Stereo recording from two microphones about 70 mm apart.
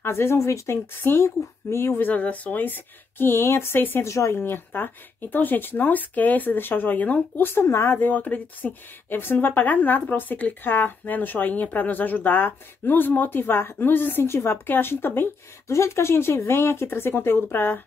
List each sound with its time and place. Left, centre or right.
0.0 s speech: left
2.0 s speech: left
4.0 s a woman's voice: left
4.4 s speech: left
7.6 s speech: left
8.0 s speech: left